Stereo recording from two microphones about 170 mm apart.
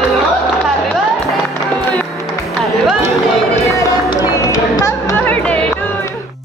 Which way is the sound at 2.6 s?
Centre (ahead or behind).